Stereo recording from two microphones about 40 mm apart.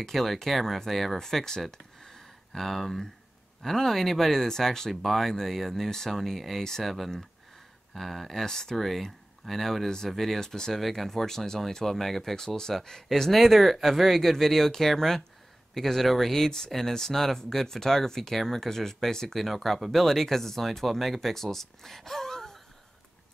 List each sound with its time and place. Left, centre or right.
0.0 s speech: centre
1.7 s a sound: centre
3.6 s speech: centre